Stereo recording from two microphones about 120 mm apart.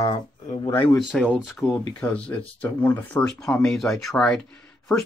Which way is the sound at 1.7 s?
15° left (ahead or behind).